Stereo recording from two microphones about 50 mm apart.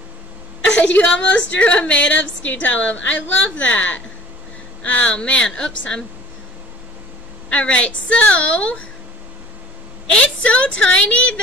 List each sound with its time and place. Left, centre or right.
0.9 s a woman's voice: left
7.4 s a woman's voice: left
10.1 s a woman's voice: left